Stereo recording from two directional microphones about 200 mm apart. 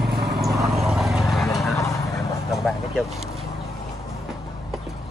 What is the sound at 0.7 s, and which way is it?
Vehicle, centre (ahead or behind).